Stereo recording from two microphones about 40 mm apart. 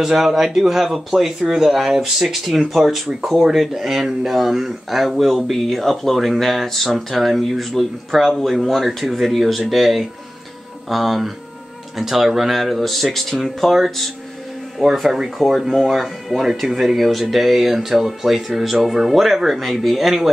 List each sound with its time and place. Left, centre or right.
0.0 s speech: centre
14.8 s speech: centre
15.0 s speech: centre
15.3 s speech: centre